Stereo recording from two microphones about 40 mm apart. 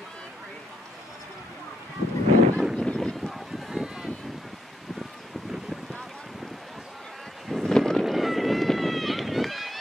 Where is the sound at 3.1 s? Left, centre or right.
Centre.